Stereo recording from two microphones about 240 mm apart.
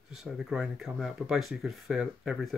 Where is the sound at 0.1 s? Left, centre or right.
Centre.